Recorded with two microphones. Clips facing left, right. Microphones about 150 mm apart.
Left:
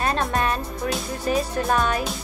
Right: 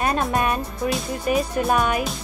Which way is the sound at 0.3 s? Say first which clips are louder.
Right 2 dB; 15° right (ahead or behind).